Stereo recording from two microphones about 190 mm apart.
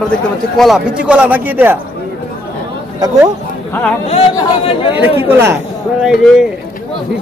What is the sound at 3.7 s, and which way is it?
Speech, 10° left (ahead or behind).